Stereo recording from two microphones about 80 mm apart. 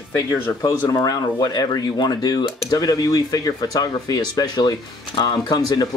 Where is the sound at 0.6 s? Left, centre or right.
Left.